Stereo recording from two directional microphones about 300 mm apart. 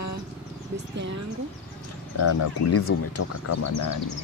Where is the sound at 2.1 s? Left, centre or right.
Left.